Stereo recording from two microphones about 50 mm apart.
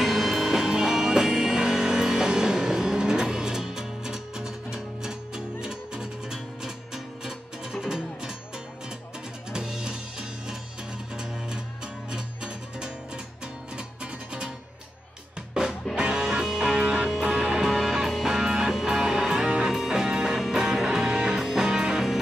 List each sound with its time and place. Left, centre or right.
0.0 s music: centre
9.5 s music: centre
12.1 s music: centre
15.9 s music: centre